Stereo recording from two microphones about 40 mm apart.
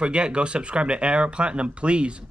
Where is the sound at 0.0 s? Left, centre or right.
Right.